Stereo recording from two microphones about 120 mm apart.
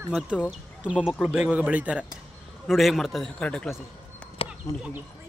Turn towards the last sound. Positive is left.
turn(degrees=50)  # may be behind; listen again after turning